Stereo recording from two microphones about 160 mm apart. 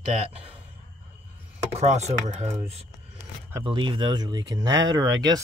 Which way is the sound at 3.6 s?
30° right (ahead or behind).